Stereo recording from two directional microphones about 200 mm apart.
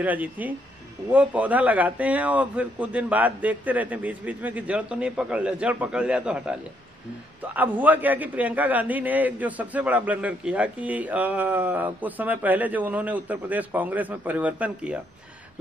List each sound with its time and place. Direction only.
0.0 s a man's voice: 10° right (ahead or behind)
7.5 s a man's voice: 10° right (ahead or behind)